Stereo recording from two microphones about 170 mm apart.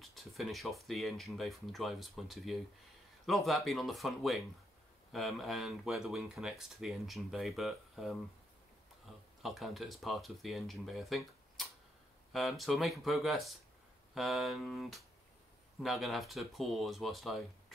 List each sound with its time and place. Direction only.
0.0 s speech: centre (ahead or behind)